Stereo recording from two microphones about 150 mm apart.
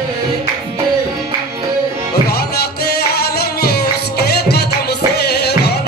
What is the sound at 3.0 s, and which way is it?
Music, 90° left.